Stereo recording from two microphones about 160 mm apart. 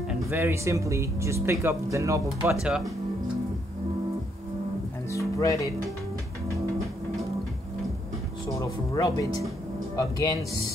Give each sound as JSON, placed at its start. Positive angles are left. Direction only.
{"t": 0.1, "sound": "speech", "side_deg": -15}
{"t": 2.6, "sound": "speech", "side_deg": -5}
{"t": 5.1, "sound": "music", "side_deg": 20}
{"t": 8.5, "sound": "speech", "side_deg": 20}